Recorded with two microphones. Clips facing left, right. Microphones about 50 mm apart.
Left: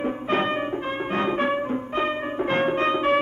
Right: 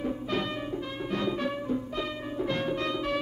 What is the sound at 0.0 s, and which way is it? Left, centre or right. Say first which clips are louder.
Music: left 7 dB; left.